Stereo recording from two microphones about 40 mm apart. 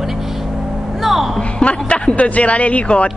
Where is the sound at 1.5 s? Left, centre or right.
Left.